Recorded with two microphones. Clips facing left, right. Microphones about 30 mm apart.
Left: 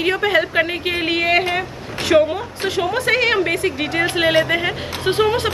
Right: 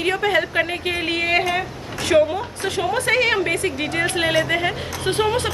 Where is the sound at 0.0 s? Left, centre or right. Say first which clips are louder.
Left 2 dB; centre.